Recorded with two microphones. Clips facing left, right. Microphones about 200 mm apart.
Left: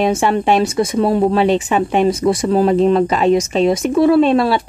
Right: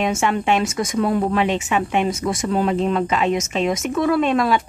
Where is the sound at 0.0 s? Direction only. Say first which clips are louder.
Left 5 dB; 35° left (ahead or behind).